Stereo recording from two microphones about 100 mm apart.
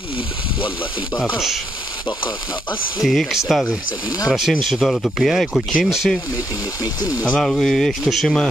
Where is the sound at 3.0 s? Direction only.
Centre (ahead or behind).